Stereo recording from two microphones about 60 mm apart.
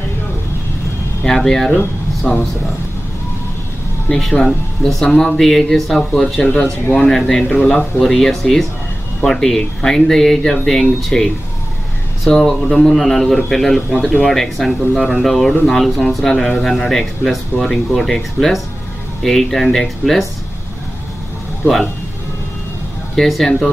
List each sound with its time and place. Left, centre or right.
1.2 s speech: centre
4.1 s speech: centre
6.6 s speech: left
7.1 s speech: centre
7.4 s speech: centre
8.0 s speech: centre
23.1 s speech: centre